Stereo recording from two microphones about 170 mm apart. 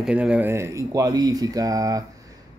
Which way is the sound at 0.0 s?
5° right (ahead or behind).